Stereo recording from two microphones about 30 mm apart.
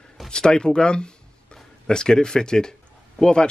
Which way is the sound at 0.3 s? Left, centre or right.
Left.